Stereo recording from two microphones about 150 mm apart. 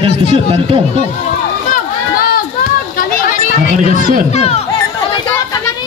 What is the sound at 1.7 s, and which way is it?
Run, 75° left (ahead or behind).